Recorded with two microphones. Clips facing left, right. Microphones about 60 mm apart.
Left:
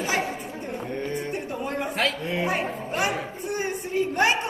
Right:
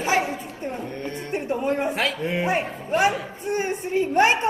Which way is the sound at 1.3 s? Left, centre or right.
Right.